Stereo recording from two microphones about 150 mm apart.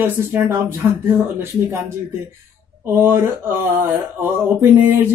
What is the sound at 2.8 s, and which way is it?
Speech, 15° right (ahead or behind).